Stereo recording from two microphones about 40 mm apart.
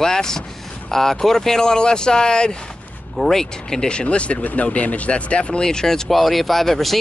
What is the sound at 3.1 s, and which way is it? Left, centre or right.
Speech, centre.